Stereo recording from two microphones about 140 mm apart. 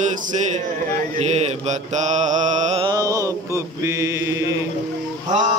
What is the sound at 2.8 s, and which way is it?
Mantra, 25° right (ahead or behind).